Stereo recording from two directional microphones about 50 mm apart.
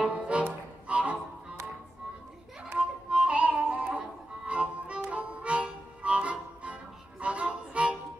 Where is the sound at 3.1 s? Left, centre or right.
Right.